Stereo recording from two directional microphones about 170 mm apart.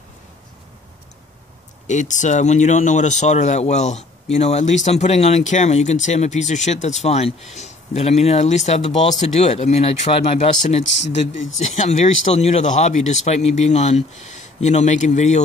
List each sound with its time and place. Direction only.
1.9 s speech: 45° left (ahead or behind)
10.8 s speech: 90° left
11.5 s speech: 45° left (ahead or behind)